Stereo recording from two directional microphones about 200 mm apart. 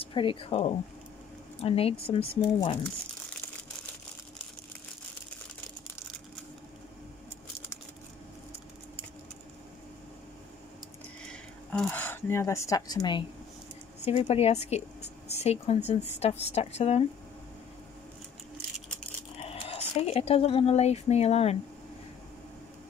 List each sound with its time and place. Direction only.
0.0 s speech: 25° left (ahead or behind)
11.7 s a woman's voice: 5° left (ahead or behind); by 17.0 s 30° left (ahead or behind)
19.3 s speech: 30° left (ahead or behind)